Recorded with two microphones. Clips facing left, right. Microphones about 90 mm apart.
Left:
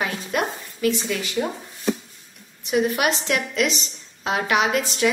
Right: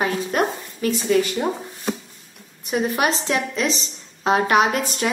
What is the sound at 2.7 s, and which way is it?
A woman's voice, 35° right (ahead or behind).